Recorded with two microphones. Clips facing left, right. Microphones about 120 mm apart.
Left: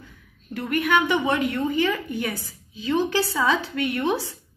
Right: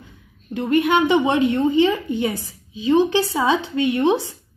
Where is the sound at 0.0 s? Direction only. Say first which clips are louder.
Right 2 dB; 25° right (ahead or behind).